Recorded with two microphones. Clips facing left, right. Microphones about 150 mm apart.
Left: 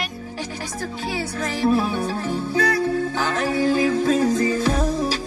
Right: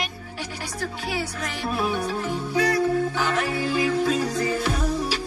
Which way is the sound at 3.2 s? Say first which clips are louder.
Left 3 dB; 40° left (ahead or behind).